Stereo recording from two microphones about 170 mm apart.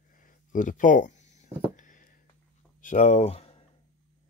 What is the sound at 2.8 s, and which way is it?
Speech, 45° left (ahead or behind).